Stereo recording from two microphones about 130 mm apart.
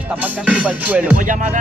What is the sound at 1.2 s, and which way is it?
Speech, 85° right.